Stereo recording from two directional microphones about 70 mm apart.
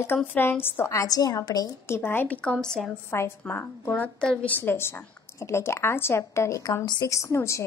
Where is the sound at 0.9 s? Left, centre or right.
Left.